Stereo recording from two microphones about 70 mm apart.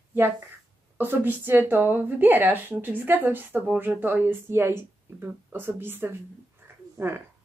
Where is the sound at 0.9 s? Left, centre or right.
Right.